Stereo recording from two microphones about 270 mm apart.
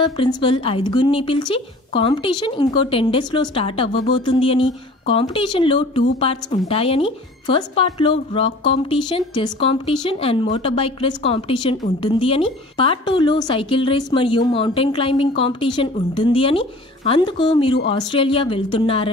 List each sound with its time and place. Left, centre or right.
0.0 s a woman's voice: centre